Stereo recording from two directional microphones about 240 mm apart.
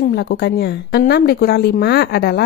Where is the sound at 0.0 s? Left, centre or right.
Left.